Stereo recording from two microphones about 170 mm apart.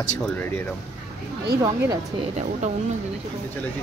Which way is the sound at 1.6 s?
20° right (ahead or behind).